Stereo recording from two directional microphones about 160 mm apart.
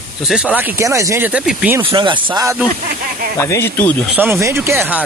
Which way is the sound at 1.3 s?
5° right (ahead or behind).